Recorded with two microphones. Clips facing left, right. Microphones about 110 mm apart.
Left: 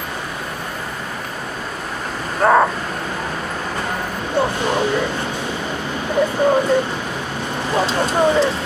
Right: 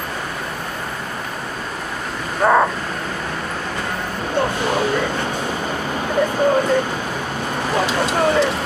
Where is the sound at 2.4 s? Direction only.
5° left (ahead or behind).